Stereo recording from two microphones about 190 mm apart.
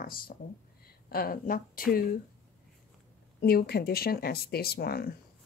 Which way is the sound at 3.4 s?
55° left (ahead or behind).